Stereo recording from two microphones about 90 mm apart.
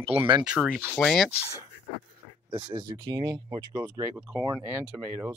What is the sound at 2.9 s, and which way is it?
Speech, 45° right (ahead or behind).